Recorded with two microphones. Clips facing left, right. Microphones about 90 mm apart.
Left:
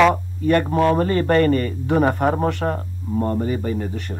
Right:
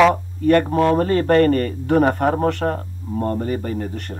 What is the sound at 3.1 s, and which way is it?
Speech, 25° left (ahead or behind).